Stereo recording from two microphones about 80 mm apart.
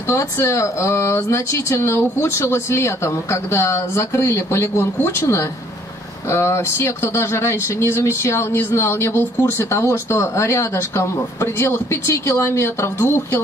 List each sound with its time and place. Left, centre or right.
0.1 s speech: left